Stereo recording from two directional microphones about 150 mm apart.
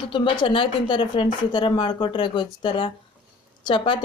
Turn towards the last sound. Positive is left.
turn(degrees=35)  # may be behind; listen again after turning